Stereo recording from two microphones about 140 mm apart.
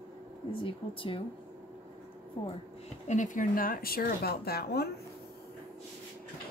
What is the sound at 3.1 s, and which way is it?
A woman's voice, 65° left (ahead or behind).